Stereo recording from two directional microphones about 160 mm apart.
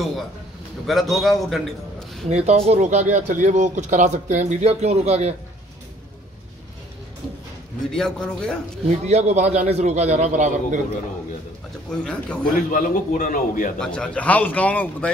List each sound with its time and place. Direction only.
0.8 s a man's voice: centre (ahead or behind)
2.2 s speech: 45° right (ahead or behind)
7.9 s a man's voice: 5° left (ahead or behind)
8.8 s speech: 45° right (ahead or behind)
11.9 s a man's voice: 5° left (ahead or behind)
12.7 s a man's voice: 55° left (ahead or behind)
13.7 s speech: 5° left (ahead or behind)